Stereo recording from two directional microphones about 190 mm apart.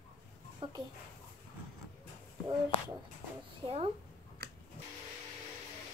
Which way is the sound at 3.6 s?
30° right (ahead or behind).